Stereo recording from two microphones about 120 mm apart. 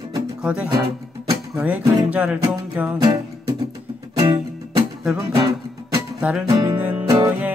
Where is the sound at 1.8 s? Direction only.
25° right (ahead or behind).